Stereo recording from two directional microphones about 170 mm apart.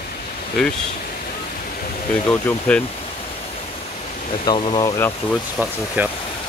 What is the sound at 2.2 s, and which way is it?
Speech, 10° left (ahead or behind).